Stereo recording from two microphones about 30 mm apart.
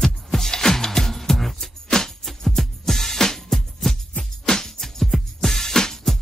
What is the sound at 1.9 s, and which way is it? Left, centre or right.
Music, centre.